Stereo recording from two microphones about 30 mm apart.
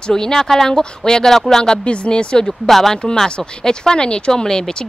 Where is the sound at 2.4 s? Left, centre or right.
Centre.